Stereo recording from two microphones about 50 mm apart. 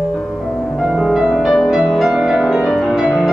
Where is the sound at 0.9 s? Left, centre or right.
Centre.